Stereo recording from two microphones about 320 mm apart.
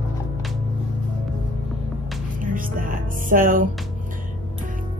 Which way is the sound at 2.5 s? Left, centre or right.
Right.